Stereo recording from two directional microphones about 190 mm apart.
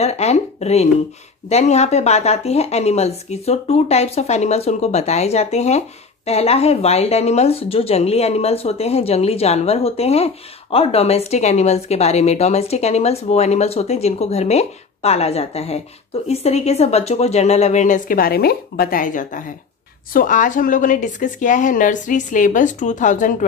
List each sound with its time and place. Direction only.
0.0 s a woman's voice: 35° left (ahead or behind)